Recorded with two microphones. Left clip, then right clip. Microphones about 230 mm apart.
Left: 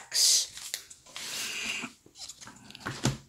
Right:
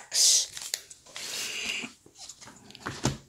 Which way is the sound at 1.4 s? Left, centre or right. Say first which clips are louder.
Right 1 dB; centre.